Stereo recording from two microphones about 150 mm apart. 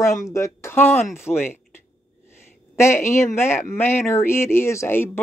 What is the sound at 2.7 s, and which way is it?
Speech, 15° left (ahead or behind).